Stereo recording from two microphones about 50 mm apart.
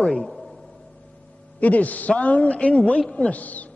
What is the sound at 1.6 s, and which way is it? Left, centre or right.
A man's voice, left.